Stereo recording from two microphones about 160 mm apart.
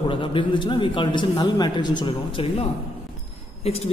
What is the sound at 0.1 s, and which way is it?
A man's voice, 30° left (ahead or behind).